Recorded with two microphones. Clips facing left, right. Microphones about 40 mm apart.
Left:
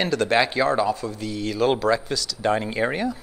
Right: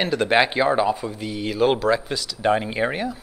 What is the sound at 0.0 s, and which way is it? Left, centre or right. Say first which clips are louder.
Speech: right 1 dB; centre.